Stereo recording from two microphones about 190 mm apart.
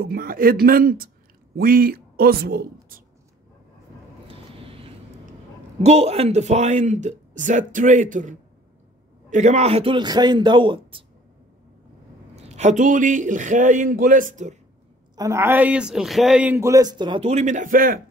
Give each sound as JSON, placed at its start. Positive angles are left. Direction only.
{"t": 0.0, "sound": "speech", "side_deg": -50}
{"t": 4.3, "sound": "vehicle", "side_deg": -30}
{"t": 5.8, "sound": "speech", "side_deg": -35}
{"t": 12.4, "sound": "speech", "side_deg": -35}
{"t": 15.1, "sound": "a man's voice", "side_deg": -15}
{"t": 17.3, "sound": "speech", "side_deg": -40}